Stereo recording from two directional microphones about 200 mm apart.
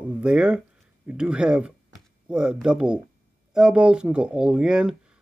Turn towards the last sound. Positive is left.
turn(degrees=-5)  # may be behind; listen again after turning